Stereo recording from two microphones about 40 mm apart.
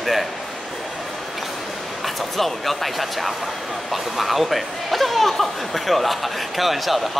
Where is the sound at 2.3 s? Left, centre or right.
Centre.